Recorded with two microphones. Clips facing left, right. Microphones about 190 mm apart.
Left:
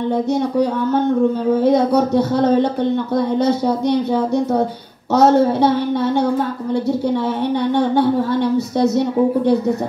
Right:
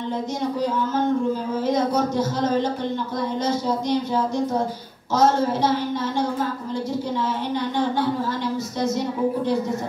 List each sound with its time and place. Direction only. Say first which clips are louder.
0.1 s a woman's voice: left 7 dB; 60° left (ahead or behind)
7.7 s a woman's voice: left 7 dB; 65° left (ahead or behind)